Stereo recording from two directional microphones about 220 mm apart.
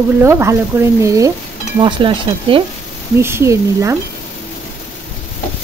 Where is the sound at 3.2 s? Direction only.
10° right (ahead or behind).